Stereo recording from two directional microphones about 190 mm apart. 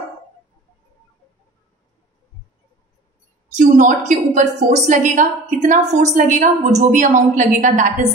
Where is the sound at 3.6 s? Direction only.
40° right (ahead or behind).